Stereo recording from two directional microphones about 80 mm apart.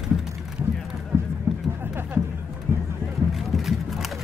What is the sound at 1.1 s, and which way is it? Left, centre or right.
Clip-clop, right.